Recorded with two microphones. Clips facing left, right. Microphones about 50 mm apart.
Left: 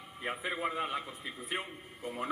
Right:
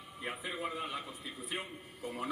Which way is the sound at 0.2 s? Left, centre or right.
Left.